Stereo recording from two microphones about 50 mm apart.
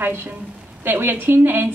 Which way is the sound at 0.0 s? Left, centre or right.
Right.